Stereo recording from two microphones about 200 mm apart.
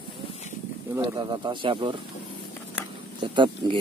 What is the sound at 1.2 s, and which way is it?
Speech, 20° right (ahead or behind).